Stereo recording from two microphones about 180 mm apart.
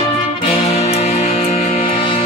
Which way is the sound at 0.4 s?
35° left (ahead or behind).